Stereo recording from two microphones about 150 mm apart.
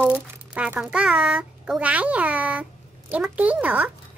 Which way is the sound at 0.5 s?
5° right (ahead or behind).